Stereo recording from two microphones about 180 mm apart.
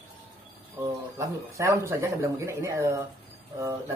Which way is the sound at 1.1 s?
15° right (ahead or behind).